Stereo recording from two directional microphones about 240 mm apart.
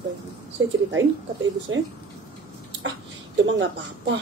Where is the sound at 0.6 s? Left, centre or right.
Right.